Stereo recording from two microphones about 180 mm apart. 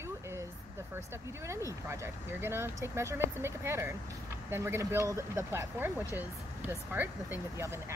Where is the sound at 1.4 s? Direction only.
15° right (ahead or behind).